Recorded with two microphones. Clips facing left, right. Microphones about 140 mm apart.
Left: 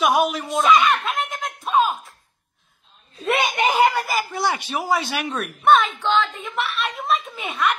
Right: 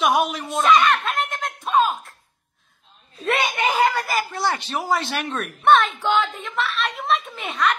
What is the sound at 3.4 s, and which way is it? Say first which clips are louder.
Speech: left 2 dB; 15° left (ahead or behind).